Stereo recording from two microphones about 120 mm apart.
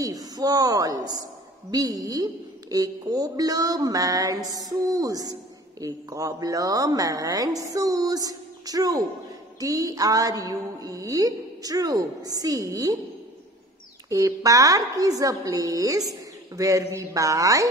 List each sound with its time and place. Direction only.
0.0 s a woman's voice: 30° right (ahead or behind)
14.0 s a woman's voice: 25° right (ahead or behind)